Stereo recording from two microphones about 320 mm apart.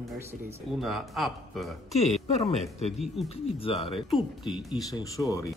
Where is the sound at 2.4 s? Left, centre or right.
Centre.